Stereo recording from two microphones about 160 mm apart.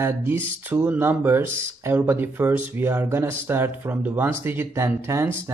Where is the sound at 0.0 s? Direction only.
15° right (ahead or behind).